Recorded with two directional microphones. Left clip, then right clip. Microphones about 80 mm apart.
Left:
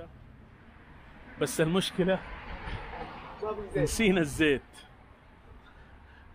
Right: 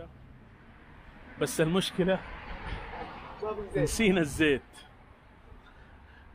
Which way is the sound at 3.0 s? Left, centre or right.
Centre.